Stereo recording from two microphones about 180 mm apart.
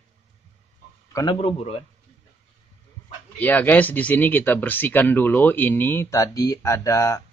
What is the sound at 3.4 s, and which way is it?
Speech, 10° left (ahead or behind).